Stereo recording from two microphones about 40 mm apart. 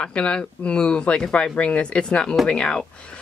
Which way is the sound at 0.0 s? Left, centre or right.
Left.